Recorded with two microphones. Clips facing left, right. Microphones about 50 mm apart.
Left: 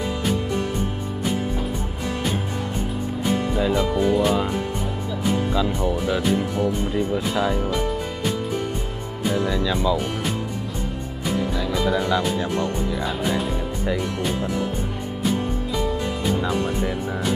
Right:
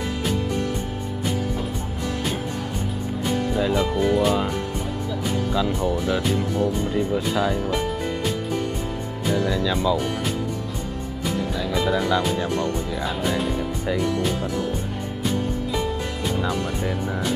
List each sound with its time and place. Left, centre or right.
3.5 s speech: centre
6.5 s speech: left
6.9 s speech: centre
9.2 s speech: centre
12.5 s speech: centre
12.9 s speech: centre
16.3 s speech: centre